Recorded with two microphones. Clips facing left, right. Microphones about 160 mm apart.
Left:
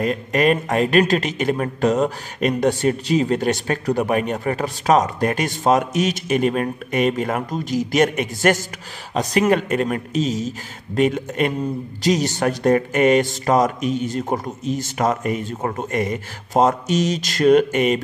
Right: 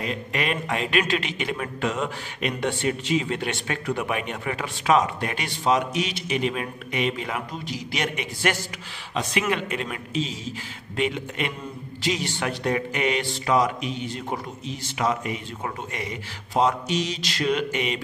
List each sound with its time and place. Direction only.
0.0 s a man's voice: 45° left (ahead or behind)